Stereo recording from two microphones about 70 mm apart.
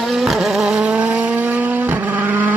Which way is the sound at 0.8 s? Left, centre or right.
Centre.